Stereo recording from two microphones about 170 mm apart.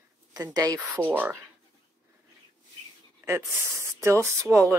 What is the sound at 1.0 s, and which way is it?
Speech, 10° right (ahead or behind).